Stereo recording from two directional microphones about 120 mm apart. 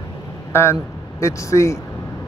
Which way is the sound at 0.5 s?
20° left (ahead or behind).